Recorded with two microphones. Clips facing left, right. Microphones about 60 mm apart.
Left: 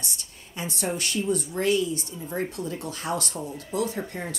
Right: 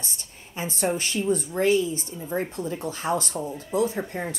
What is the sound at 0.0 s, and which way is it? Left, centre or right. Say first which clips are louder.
A woman's voice: even; right.